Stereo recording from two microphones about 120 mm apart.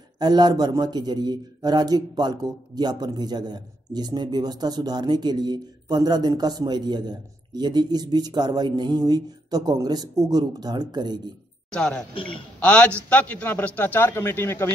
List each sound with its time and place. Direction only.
0.2 s a man's voice: 35° right (ahead or behind)
11.7 s a man's voice: 5° left (ahead or behind)
12.1 s a man's voice: 45° left (ahead or behind)
12.5 s a man's voice: 10° left (ahead or behind)